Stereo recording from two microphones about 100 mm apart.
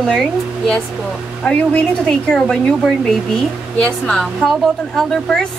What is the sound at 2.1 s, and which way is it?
Speech, 5° left (ahead or behind).